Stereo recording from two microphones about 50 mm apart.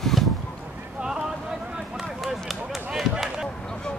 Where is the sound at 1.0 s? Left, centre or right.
Centre.